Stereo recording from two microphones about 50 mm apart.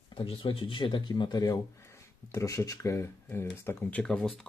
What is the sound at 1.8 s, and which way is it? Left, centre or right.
Speech, left.